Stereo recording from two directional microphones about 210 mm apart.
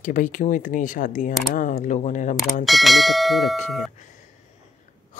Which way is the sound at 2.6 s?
Centre (ahead or behind).